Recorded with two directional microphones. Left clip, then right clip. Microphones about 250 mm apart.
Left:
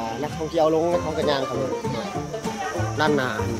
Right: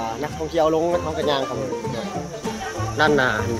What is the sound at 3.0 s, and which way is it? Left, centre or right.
Speech, centre.